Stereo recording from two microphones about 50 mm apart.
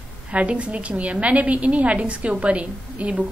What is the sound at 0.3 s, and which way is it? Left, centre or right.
A woman's voice, right.